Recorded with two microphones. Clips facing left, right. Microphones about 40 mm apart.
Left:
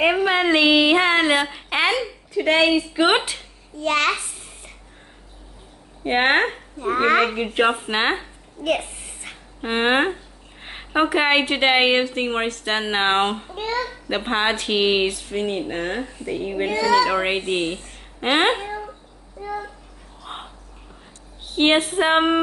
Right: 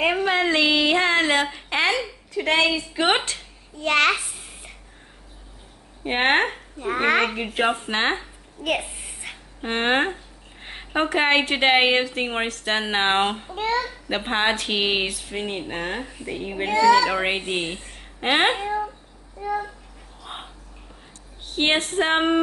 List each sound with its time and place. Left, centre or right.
0.0 s speech: centre
3.8 s a child's voice: right
6.0 s a woman's voice: centre
8.6 s a sound: centre
9.6 s a woman's voice: centre
16.7 s a child's voice: right
17.1 s a woman's voice: centre
20.2 s a sound: centre
21.5 s speech: centre